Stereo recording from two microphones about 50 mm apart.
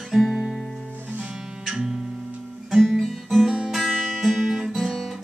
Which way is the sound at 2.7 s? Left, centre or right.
Centre.